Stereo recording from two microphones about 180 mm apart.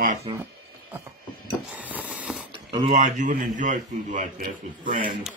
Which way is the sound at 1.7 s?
10° right (ahead or behind).